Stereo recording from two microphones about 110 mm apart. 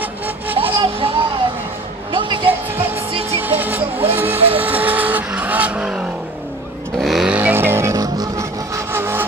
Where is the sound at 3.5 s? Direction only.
15° right (ahead or behind).